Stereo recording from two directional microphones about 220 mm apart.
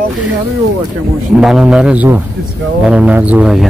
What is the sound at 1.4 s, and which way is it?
Speech, centre (ahead or behind).